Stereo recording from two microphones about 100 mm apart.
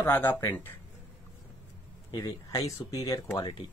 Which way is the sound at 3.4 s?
55° left (ahead or behind).